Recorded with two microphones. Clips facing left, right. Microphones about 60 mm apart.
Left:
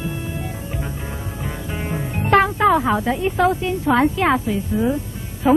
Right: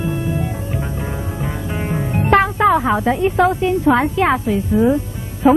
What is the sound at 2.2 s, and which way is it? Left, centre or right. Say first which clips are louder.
Music: right 2 dB; centre.